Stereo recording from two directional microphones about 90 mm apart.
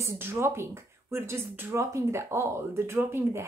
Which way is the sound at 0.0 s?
30° right (ahead or behind).